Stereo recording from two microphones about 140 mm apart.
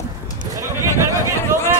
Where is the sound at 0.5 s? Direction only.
20° right (ahead or behind).